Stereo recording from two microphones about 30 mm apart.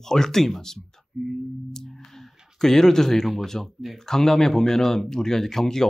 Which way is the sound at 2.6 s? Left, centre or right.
Centre.